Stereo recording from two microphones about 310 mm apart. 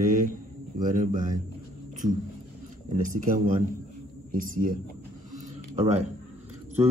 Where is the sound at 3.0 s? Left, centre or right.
Right.